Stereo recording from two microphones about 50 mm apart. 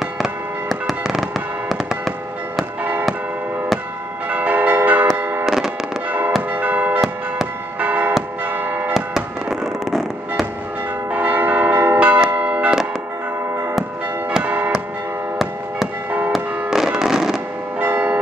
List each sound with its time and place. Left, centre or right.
0.2 s fireworks: centre
2.8 s a sound: right
4.3 s church bell: right
5.1 s fireworks: right
5.4 s music: centre
6.5 s church bell: right
8.5 s change ringing: right
8.9 s fireworks: centre
11.1 s church bell: right
14.4 s church bell: right
16.3 s fireworks: centre
17.7 s church bell: right